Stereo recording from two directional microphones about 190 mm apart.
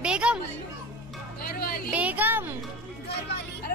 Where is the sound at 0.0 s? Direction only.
5° right (ahead or behind).